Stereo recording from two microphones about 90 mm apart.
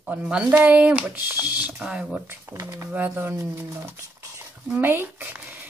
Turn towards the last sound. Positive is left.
turn(degrees=-20)  # may be behind; listen again after turning